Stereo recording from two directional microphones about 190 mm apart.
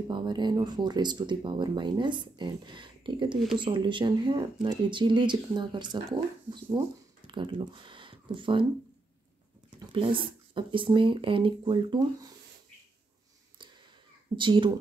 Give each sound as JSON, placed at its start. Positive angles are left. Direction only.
{"t": 0.1, "sound": "speech", "side_deg": -20}
{"t": 7.2, "sound": "speech", "side_deg": -25}
{"t": 9.8, "sound": "speech", "side_deg": -25}
{"t": 14.3, "sound": "speech", "side_deg": -25}